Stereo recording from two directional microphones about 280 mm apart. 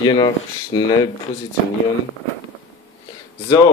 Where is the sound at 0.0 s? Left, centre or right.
Centre.